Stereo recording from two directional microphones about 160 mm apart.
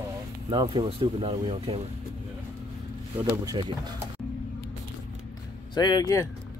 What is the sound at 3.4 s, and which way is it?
Speech, 25° right (ahead or behind).